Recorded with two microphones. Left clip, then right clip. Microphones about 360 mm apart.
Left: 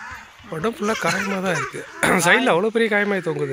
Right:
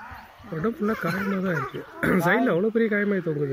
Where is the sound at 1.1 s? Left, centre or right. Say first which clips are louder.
Left 5 dB; left.